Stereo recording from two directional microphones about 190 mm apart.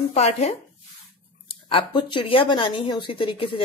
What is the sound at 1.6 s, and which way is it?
A woman's voice, 25° left (ahead or behind).